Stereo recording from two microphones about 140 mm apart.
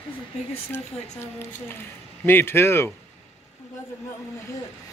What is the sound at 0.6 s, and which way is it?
Speech, 15° left (ahead or behind).